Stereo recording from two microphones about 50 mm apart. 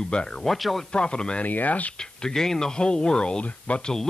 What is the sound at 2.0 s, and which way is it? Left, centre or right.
Speech, centre.